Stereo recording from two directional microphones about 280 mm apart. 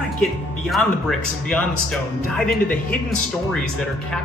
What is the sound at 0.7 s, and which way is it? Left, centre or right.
Speech, centre.